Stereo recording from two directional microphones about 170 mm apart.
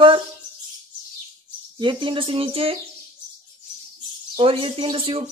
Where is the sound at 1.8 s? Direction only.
30° right (ahead or behind).